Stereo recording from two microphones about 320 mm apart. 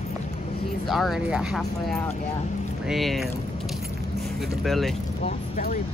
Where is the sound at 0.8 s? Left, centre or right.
Centre.